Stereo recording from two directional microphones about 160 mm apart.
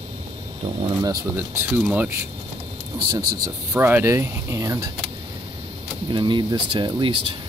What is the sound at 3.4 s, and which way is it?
Speech, 15° right (ahead or behind).